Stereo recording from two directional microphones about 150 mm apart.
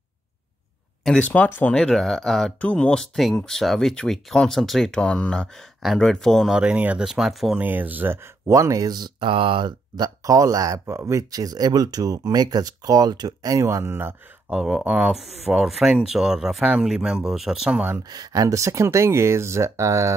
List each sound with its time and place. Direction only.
1.0 s speech: 5° left (ahead or behind)
7.6 s speech: 10° right (ahead or behind)
14.5 s speech: 5° right (ahead or behind)
18.0 s speech: 25° right (ahead or behind)